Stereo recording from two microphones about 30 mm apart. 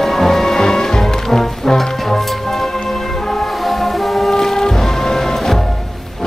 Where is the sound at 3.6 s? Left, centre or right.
Centre.